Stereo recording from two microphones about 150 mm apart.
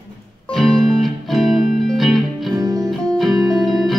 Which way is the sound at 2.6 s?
25° right (ahead or behind).